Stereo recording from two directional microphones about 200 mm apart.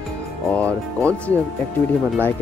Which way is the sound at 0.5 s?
5° left (ahead or behind).